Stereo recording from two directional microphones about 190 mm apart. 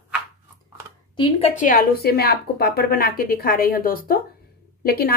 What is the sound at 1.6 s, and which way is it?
A woman's voice, 45° left (ahead or behind).